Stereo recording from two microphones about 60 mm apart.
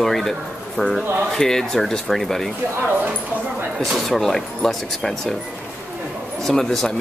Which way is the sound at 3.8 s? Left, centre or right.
Centre.